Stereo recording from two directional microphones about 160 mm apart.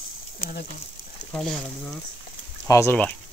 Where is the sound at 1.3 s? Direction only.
5° left (ahead or behind).